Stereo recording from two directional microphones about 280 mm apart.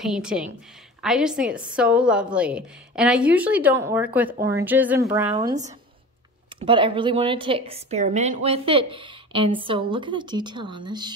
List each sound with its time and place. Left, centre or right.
0.0 s a woman's voice: centre
6.6 s speech: centre